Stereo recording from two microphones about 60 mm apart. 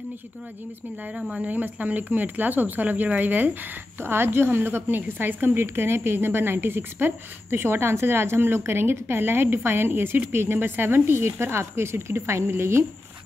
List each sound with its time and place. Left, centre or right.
1.3 s a woman's voice: right